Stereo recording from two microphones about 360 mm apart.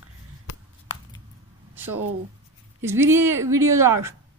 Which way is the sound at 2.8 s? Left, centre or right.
Centre.